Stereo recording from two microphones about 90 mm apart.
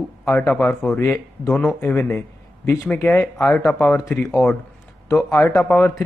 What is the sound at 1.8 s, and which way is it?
A man's voice, 25° left (ahead or behind).